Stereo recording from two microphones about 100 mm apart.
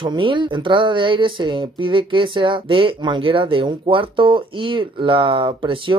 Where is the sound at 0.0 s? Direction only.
55° right (ahead or behind).